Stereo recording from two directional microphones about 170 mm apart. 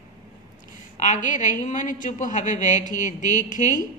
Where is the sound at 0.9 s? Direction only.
45° left (ahead or behind).